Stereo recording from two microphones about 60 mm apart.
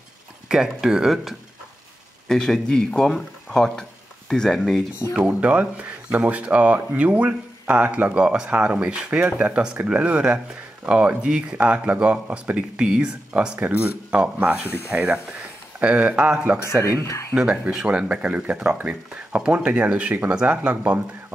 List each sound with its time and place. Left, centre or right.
0.5 s speech: centre
2.2 s speech: centre
5.1 s speech: centre
13.6 s speech: right
16.6 s speech: left
17.3 s speech: centre